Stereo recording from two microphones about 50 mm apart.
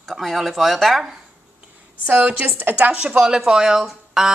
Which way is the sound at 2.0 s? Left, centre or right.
Right.